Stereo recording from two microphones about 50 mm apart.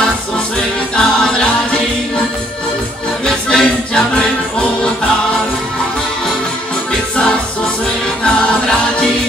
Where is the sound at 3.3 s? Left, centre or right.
Centre.